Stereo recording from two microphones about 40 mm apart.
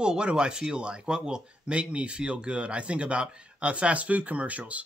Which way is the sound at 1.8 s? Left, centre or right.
Right.